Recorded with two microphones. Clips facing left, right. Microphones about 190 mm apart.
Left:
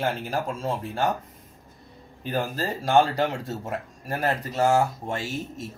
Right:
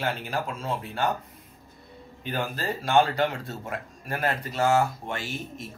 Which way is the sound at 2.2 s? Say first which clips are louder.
Left 3 dB; 40° left (ahead or behind).